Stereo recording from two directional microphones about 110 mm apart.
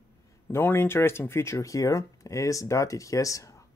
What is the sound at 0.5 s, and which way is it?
Speech, 20° left (ahead or behind).